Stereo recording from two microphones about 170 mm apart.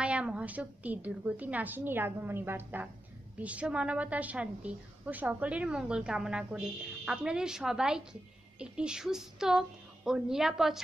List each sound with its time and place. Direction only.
0.0 s a woman's voice: 5° right (ahead or behind)